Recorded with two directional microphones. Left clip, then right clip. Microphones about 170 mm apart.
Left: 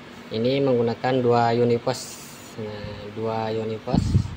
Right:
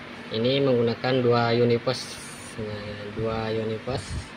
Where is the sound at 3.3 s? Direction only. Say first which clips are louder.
Left 3 dB; 5° left (ahead or behind).